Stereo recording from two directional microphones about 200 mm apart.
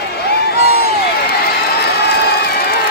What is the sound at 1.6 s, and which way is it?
Crowd, 55° left (ahead or behind).